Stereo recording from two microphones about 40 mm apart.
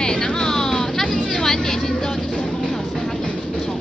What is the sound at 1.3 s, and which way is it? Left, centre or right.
Vehicle, centre.